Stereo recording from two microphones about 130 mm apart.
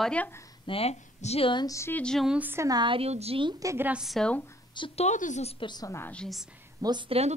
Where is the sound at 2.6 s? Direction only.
35° right (ahead or behind).